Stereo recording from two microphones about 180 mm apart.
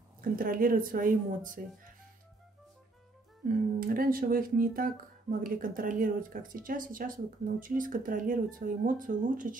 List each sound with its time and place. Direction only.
0.2 s speech: 50° right (ahead or behind)
3.4 s speech: 50° right (ahead or behind)